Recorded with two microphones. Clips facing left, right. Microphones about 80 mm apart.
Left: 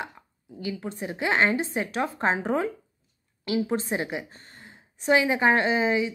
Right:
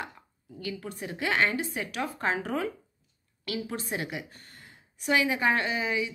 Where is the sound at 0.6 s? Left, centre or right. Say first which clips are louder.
Left 4 dB; left.